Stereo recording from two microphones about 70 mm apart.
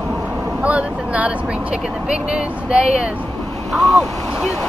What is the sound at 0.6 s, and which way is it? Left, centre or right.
Vehicle, centre.